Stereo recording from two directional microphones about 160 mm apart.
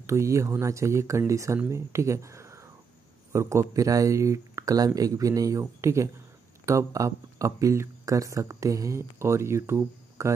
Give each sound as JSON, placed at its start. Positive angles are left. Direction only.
{"t": 0.0, "sound": "speech", "side_deg": -20}